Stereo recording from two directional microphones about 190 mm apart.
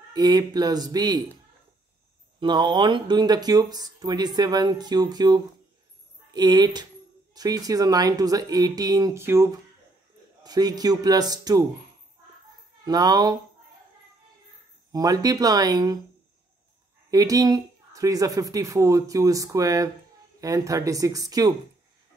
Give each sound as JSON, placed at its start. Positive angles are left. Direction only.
{"t": 0.1, "sound": "speech", "side_deg": -20}
{"t": 2.4, "sound": "speech", "side_deg": -25}
{"t": 12.8, "sound": "speech", "side_deg": -20}
{"t": 14.9, "sound": "speech", "side_deg": -20}
{"t": 17.1, "sound": "speech", "side_deg": -20}